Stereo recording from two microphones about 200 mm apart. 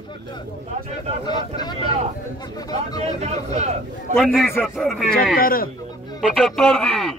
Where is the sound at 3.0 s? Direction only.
35° right (ahead or behind).